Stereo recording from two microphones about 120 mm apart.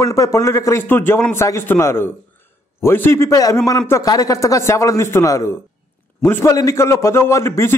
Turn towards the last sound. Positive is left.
turn(degrees=20)  # may be behind; listen again after turning